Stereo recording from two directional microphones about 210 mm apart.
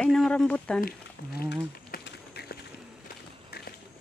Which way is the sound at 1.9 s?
50° left (ahead or behind).